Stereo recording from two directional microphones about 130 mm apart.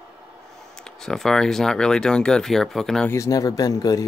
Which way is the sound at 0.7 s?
5° left (ahead or behind).